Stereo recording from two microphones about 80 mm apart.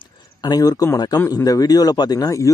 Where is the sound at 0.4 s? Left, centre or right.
Left.